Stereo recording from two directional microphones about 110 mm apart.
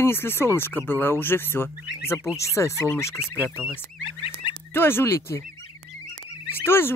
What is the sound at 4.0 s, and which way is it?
Fowl, 50° left (ahead or behind).